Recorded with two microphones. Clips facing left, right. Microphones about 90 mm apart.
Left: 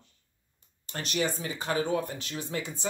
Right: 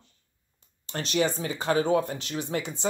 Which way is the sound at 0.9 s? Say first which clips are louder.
Right 5 dB; 90° right.